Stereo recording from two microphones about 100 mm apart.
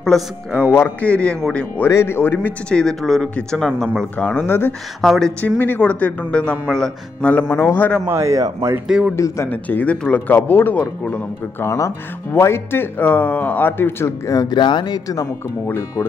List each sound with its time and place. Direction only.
0.0 s speech: 5° left (ahead or behind)
1.9 s speech: 25° left (ahead or behind)
2.7 s speech: 5° left (ahead or behind)
4.2 s speech: 15° left (ahead or behind)
5.0 s speech: centre (ahead or behind)
5.8 s speech: 15° left (ahead or behind)
8.1 s a man's voice: 30° right (ahead or behind)
8.8 s a man's voice: 5° right (ahead or behind)
9.1 s speech: 30° left (ahead or behind)
9.5 s speech: 15° left (ahead or behind)
11.6 s speech: 30° left (ahead or behind)
13.0 s speech: 15° left (ahead or behind); by 14.5 s 30° left (ahead or behind)
14.5 s speech: 50° left (ahead or behind)
15.6 s speech: 25° left (ahead or behind)